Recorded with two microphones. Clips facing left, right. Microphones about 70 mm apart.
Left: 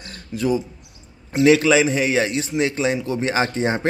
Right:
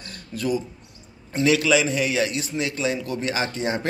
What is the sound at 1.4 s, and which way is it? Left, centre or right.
A man's voice, left.